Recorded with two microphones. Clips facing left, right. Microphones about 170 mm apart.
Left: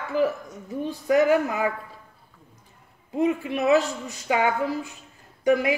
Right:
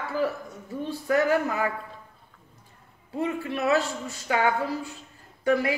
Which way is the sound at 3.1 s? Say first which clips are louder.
Left 5 dB; 15° left (ahead or behind).